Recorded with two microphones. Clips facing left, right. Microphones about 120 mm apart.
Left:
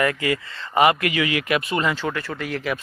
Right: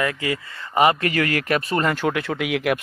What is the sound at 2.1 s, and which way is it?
Speech, 75° right (ahead or behind).